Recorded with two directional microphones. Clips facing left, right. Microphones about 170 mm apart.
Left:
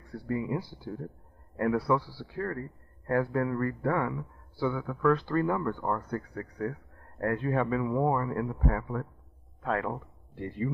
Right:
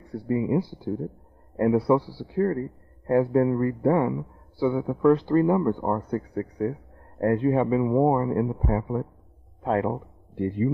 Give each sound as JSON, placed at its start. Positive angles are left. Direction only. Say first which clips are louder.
{"t": 0.1, "sound": "a man's voice", "louder": "right 7 dB", "side_deg": -20}